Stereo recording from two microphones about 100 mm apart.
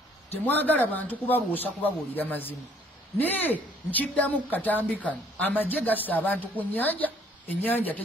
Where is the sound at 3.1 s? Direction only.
15° left (ahead or behind).